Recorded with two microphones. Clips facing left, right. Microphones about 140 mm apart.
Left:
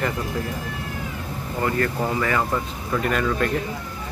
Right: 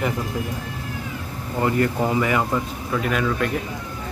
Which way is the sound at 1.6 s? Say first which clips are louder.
Right 3 dB; 15° right (ahead or behind).